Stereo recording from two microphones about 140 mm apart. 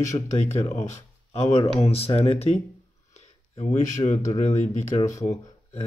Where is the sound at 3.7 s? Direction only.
65° left (ahead or behind).